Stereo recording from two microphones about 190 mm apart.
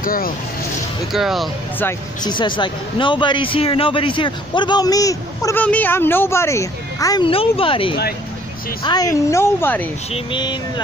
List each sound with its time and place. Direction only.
0.0 s speech: 50° left (ahead or behind)
1.1 s speech: centre (ahead or behind)
2.2 s a woman's voice: 25° left (ahead or behind)
10.1 s speech: 25° left (ahead or behind)